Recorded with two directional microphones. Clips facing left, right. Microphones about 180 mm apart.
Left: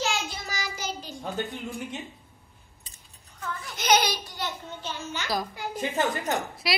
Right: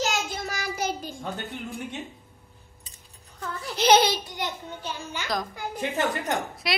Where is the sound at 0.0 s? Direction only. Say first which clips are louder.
Right 2 dB; 45° right (ahead or behind).